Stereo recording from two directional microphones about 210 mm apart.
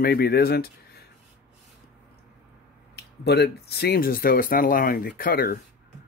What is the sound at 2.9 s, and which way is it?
Speech, 55° left (ahead or behind).